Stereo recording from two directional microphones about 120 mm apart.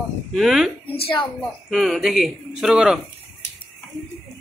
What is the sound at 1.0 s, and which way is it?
Speech, 45° left (ahead or behind).